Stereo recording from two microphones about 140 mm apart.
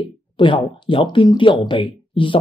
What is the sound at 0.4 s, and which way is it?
Speech, 35° left (ahead or behind).